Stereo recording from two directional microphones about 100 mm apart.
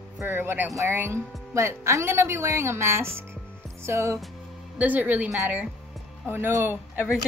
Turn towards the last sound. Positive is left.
turn(degrees=-20)  # may be behind; listen again after turning